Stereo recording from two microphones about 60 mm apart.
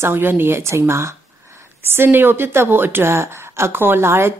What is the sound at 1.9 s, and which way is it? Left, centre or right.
A woman's voice, right.